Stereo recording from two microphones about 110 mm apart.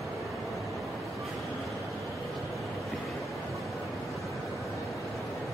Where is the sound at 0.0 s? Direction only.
Centre (ahead or behind).